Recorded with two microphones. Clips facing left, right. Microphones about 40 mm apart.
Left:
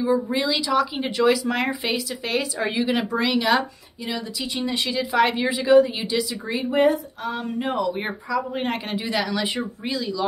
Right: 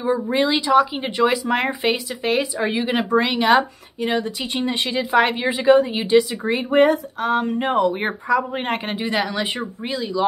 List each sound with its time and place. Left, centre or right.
0.0 s speech: right
0.9 s speech: centre